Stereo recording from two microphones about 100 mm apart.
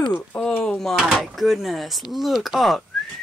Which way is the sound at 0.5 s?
10° left (ahead or behind).